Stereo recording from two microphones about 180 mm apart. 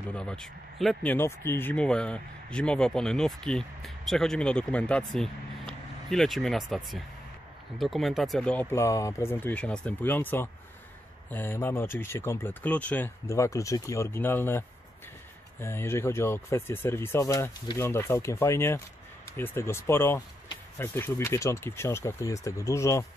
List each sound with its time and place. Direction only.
0.1 s speech: 5° left (ahead or behind)
15.6 s speech: 15° left (ahead or behind)